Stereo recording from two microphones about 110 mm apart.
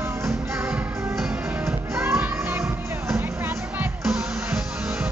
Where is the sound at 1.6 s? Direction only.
25° right (ahead or behind).